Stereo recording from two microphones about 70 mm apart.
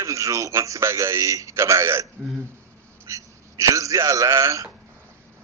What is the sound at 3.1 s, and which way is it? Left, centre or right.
A man's voice, right.